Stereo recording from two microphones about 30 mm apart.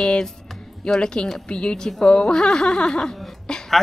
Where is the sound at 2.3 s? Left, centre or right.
Left.